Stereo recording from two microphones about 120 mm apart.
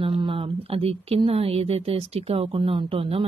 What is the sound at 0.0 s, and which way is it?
Speech, 45° right (ahead or behind).